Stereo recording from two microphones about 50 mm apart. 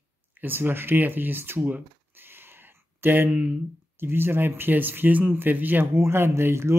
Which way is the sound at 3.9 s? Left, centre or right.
Right.